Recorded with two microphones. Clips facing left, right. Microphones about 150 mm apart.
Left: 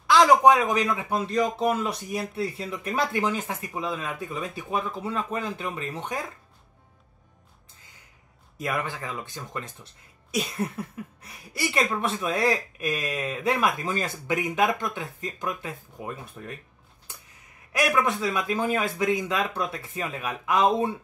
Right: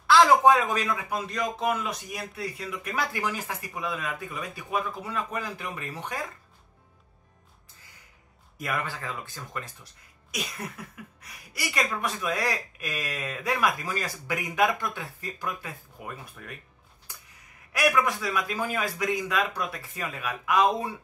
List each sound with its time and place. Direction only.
0.0 s speech: 15° left (ahead or behind)
8.5 s speech: 20° left (ahead or behind)
17.7 s speech: 25° left (ahead or behind)